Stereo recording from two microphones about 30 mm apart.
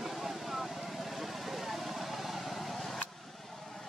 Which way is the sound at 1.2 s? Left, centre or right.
Centre.